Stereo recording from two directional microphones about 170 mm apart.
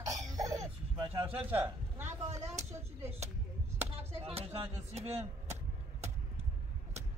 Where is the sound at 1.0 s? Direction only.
35° right (ahead or behind).